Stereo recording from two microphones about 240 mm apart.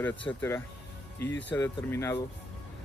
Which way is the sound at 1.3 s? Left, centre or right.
Centre.